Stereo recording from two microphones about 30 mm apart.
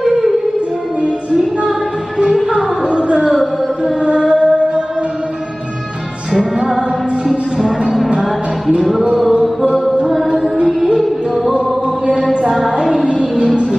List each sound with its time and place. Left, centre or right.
2.5 s music: right
4.0 s music: right
6.3 s music: centre
10.0 s music: centre
12.4 s a sound: centre
12.9 s a sound: centre